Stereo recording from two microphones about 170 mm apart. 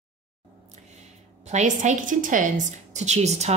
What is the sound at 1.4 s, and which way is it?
A woman's voice, 45° right (ahead or behind).